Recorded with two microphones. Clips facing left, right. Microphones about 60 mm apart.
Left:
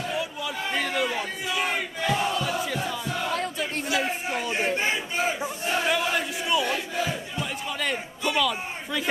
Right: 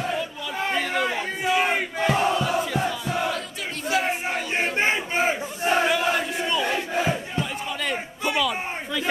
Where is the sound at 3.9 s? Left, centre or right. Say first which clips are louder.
Right 5 dB; right.